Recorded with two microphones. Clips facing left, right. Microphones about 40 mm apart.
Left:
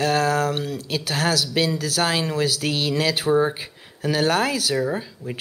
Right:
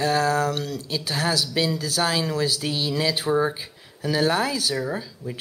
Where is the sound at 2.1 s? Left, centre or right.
Left.